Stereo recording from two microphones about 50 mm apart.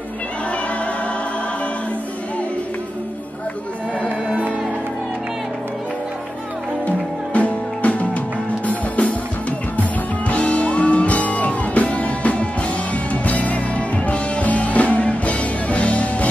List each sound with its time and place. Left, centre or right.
7.3 s music: left